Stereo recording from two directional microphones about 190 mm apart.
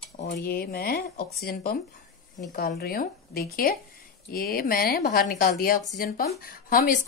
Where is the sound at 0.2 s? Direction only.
55° left (ahead or behind).